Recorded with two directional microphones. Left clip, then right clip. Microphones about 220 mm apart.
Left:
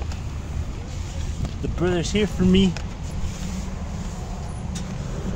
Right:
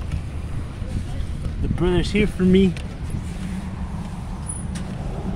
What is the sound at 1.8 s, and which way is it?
Speech, 10° right (ahead or behind).